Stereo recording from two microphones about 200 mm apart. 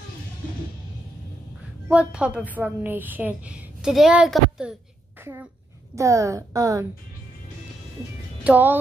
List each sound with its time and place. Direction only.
1.9 s a woman's voice: 5° right (ahead or behind)
8.5 s a woman's voice: 10° right (ahead or behind)